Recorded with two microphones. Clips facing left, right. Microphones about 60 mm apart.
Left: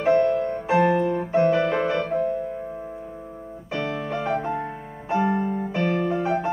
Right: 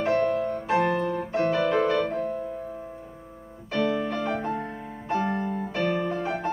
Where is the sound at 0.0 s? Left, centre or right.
Centre.